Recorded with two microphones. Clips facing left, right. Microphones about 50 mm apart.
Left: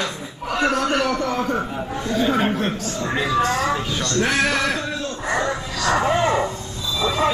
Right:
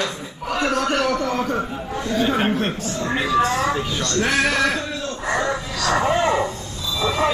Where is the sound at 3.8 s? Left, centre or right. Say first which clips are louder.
Even; centre.